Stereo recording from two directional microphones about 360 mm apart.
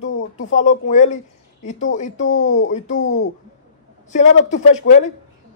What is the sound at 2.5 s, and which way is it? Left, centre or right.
Speech, left.